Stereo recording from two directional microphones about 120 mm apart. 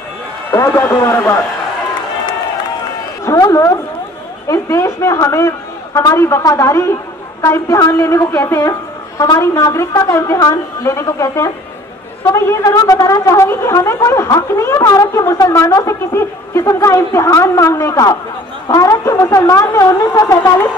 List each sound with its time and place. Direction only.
0.5 s a woman's voice: 25° left (ahead or behind)
3.3 s a woman's voice: 30° left (ahead or behind)